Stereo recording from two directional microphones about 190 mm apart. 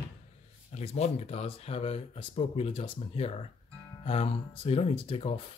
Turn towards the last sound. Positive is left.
turn(degrees=30)  # may be behind; listen again after turning